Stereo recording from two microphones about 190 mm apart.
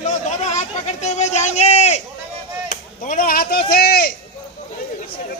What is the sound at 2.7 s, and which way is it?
Speech, 50° left (ahead or behind).